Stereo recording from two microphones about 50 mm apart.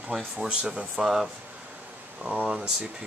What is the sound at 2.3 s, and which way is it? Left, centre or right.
Speech, right.